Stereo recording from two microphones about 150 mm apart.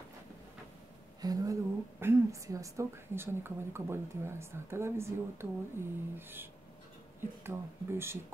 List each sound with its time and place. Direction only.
1.2 s a woman's voice: 25° right (ahead or behind)